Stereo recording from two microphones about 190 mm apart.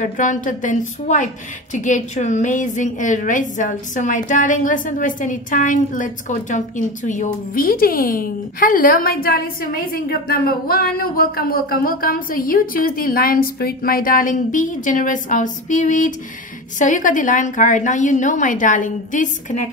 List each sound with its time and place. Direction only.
0.0 s a woman's voice: 40° left (ahead or behind)